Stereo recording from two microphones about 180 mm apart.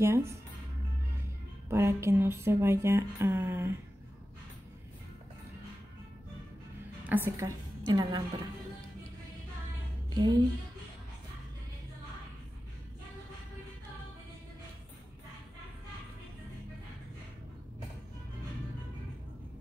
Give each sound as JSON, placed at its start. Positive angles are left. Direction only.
{"t": 0.0, "sound": "speech", "side_deg": -15}
{"t": 1.7, "sound": "speech", "side_deg": -15}
{"t": 7.1, "sound": "a woman's voice", "side_deg": -15}
{"t": 10.0, "sound": "music", "side_deg": -20}